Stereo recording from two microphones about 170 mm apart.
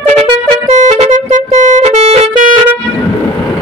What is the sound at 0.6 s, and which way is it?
Music, 45° right (ahead or behind).